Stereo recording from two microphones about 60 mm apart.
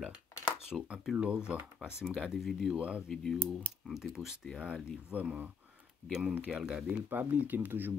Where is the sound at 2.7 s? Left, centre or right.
Centre.